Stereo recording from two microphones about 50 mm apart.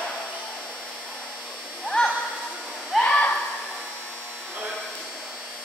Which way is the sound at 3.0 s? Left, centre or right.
Left.